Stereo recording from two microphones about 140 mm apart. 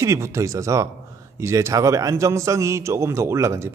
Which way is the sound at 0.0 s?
20° right (ahead or behind).